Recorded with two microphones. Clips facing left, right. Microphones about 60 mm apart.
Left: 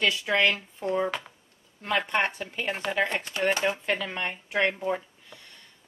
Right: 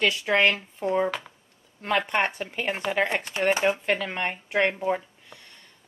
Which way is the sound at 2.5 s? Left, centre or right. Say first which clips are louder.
Right 2 dB; centre.